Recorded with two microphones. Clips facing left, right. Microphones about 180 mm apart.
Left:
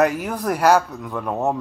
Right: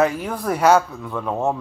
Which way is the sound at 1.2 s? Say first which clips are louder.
Even; centre (ahead or behind).